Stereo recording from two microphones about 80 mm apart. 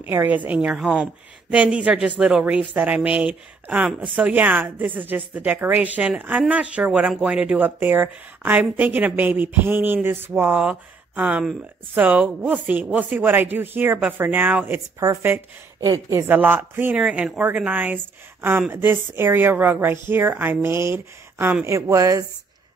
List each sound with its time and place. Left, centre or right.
0.0 s speech: right; by 2.4 s centre
2.7 s speech: centre
7.5 s speech: right
16.9 s speech: centre; by 21.5 s right
21.6 s speech: right